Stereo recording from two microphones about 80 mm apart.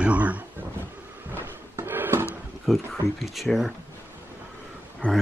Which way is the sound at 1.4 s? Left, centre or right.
Right.